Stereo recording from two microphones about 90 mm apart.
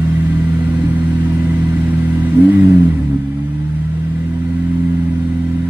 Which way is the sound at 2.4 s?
20° right (ahead or behind).